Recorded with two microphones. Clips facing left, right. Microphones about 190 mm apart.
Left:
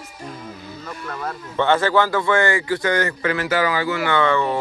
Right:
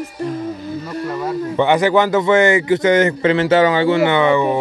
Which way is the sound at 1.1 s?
10° right (ahead or behind).